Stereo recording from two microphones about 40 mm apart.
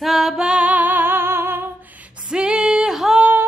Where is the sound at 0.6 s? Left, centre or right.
Right.